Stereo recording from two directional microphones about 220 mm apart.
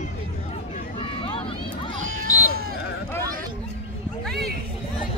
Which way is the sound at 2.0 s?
70° right (ahead or behind).